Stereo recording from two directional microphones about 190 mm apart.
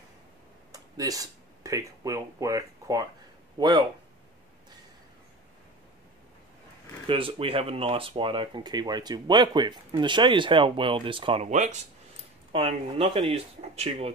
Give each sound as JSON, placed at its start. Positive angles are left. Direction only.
{"t": 0.7, "sound": "speech", "side_deg": -20}
{"t": 7.1, "sound": "speech", "side_deg": -25}